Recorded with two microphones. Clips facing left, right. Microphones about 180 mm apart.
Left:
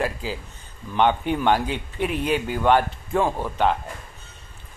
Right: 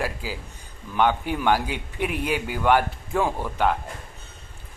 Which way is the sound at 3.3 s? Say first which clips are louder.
Left 1 dB; 15° left (ahead or behind).